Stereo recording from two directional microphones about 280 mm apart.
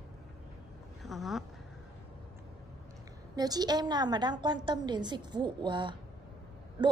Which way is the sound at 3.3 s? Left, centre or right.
Centre.